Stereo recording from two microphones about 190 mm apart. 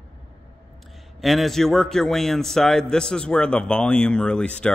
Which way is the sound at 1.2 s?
Centre (ahead or behind).